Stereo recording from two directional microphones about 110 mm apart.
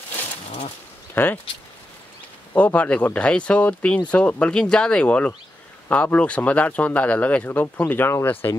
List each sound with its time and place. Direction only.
1.1 s speech: 15° left (ahead or behind)
2.5 s speech: 15° left (ahead or behind)